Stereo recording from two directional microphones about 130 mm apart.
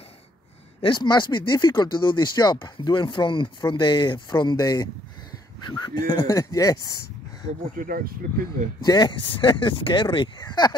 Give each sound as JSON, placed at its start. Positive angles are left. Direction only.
{"t": 0.8, "sound": "speech", "side_deg": 35}
{"t": 7.7, "sound": "speech", "side_deg": -90}
{"t": 8.8, "sound": "speech", "side_deg": 35}